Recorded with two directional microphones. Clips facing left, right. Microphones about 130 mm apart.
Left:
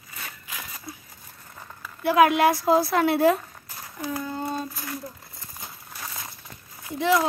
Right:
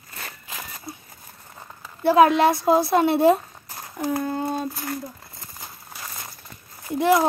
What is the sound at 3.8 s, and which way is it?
Speech, 50° right (ahead or behind).